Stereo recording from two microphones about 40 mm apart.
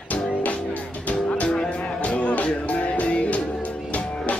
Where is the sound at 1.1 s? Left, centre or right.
Left.